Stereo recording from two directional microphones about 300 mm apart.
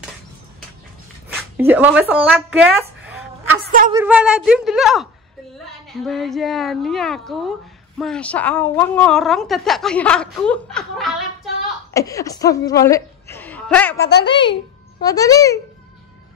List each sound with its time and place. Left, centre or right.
1.6 s speech: centre
3.9 s a woman's voice: centre
14.0 s a child's voice: left
14.5 s a child's voice: centre